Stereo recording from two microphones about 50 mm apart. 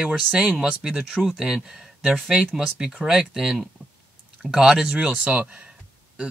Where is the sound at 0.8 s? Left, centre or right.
Centre.